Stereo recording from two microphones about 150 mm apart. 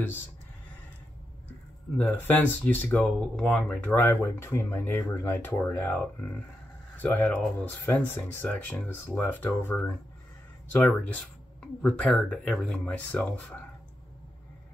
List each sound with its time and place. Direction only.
2.0 s speech: 10° left (ahead or behind)